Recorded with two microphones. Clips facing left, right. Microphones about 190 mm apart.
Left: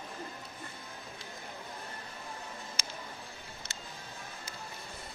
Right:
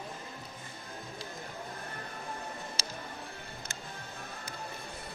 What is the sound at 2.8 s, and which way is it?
Music, 35° right (ahead or behind).